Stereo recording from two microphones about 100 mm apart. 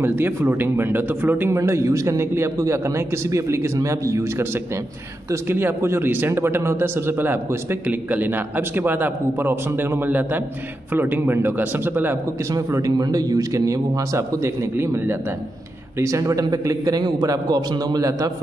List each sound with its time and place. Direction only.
0.0 s a man's voice: 20° right (ahead or behind)
1.6 s a man's voice: 30° right (ahead or behind)
12.5 s speech: 35° right (ahead or behind)